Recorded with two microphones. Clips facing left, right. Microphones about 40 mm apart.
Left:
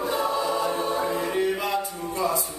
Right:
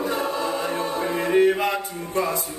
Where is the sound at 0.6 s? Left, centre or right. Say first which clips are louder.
Even; right.